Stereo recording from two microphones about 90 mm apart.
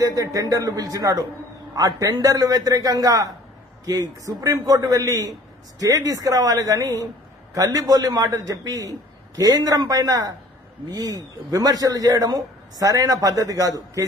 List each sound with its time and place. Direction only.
0.0 s a man's voice: 40° right (ahead or behind)